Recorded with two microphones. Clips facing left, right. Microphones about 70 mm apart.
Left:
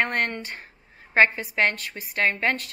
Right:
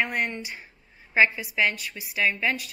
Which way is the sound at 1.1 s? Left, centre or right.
Left.